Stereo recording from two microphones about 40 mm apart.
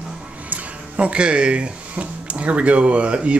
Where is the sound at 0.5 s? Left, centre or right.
Right.